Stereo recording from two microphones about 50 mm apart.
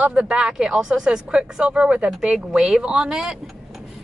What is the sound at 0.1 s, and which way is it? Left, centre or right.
A woman's voice, centre.